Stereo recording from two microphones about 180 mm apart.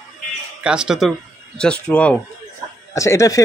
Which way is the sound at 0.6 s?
5° right (ahead or behind).